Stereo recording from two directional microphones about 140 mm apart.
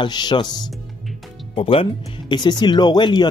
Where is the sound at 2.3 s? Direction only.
30° left (ahead or behind).